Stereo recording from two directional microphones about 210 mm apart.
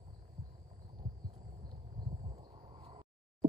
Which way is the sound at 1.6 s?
20° right (ahead or behind).